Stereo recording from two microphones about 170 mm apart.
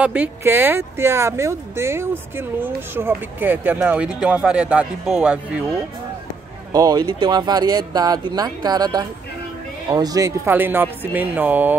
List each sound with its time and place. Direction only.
0.0 s speech: 10° right (ahead or behind)
6.7 s speech: 20° right (ahead or behind)